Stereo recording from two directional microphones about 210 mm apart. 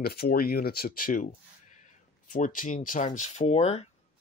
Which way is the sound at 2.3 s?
40° left (ahead or behind).